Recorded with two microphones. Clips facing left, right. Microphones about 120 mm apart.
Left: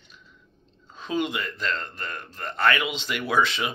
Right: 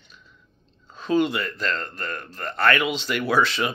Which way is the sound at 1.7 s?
45° right (ahead or behind).